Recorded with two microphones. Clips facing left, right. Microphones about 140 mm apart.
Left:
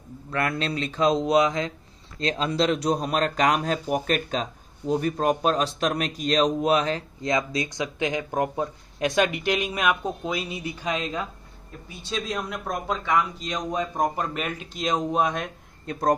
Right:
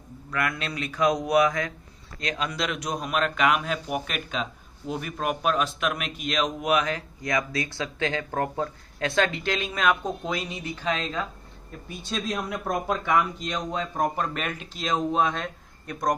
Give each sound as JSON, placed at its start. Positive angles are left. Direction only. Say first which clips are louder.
{"t": 0.3, "sound": "speech", "louder": "left 3 dB", "side_deg": 30}
{"t": 12.4, "sound": "speech", "louder": "right 2 dB", "side_deg": -5}
{"t": 13.7, "sound": "a man's voice", "louder": "left 2 dB", "side_deg": 15}